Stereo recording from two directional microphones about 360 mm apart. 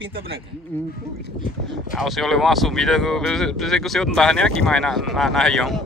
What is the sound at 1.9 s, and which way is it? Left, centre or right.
Speech, centre.